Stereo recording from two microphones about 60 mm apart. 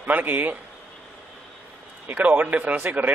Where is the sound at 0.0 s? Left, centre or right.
Right.